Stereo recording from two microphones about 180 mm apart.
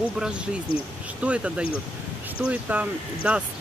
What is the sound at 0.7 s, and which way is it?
Speech, 55° left (ahead or behind).